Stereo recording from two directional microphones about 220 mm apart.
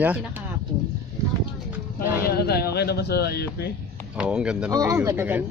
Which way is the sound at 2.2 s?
45° left (ahead or behind).